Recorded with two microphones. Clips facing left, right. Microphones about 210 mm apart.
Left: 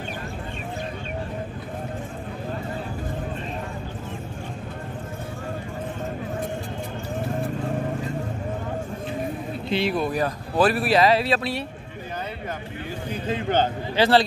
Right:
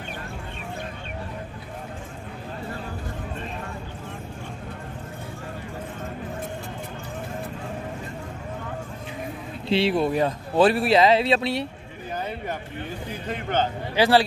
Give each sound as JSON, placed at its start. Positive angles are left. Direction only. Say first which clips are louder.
{"t": 9.7, "sound": "speech", "louder": "right 3 dB", "side_deg": -25}
{"t": 13.9, "sound": "speech", "louder": "even", "side_deg": -10}